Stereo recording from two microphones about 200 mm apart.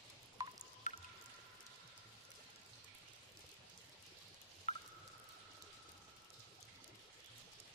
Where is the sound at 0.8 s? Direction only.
35° left (ahead or behind).